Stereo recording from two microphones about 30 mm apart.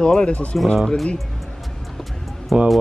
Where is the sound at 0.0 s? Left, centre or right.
Left.